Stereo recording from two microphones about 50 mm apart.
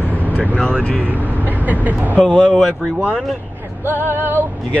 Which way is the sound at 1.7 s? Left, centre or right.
Right.